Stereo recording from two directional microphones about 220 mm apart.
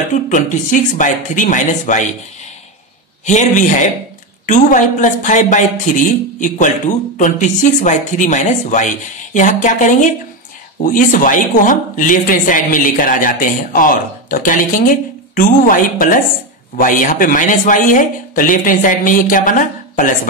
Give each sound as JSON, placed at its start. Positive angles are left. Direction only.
{"t": 0.1, "sound": "speech", "side_deg": 35}
{"t": 3.3, "sound": "speech", "side_deg": 35}